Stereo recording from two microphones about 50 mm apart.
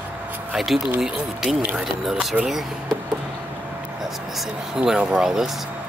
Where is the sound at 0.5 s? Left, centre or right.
Centre.